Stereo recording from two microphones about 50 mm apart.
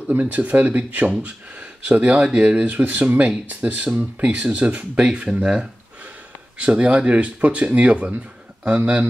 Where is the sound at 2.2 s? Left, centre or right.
Centre.